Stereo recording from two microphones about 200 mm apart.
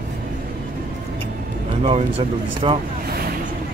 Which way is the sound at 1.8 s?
30° right (ahead or behind).